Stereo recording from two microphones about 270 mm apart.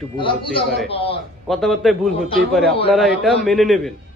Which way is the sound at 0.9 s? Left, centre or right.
Centre.